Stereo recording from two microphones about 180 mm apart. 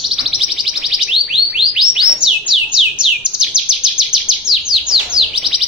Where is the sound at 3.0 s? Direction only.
5° right (ahead or behind).